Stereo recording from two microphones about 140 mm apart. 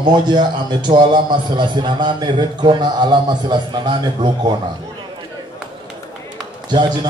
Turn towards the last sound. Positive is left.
turn(degrees=-35)  # may be behind; listen again after turning